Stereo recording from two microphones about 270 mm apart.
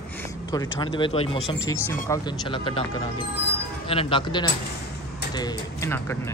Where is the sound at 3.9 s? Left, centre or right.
Centre.